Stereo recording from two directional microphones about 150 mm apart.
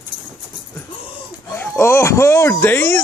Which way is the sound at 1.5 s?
15° left (ahead or behind).